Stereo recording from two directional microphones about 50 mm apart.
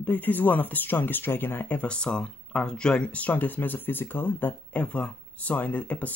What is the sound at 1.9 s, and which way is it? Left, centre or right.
Speech, centre.